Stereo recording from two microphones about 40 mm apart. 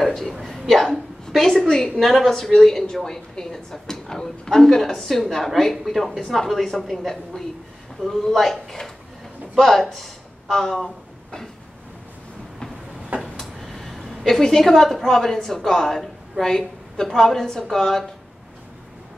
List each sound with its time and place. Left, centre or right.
0.0 s a woman's voice: centre
7.3 s a woman's voice: left
8.0 s a woman's voice: centre
13.1 s a sound: right
13.6 s a woman's voice: centre